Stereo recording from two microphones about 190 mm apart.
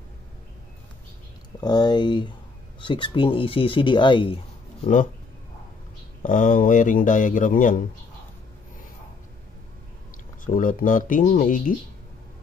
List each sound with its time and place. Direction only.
1.6 s speech: 20° left (ahead or behind)
6.2 s speech: 45° left (ahead or behind)
10.4 s speech: 45° left (ahead or behind)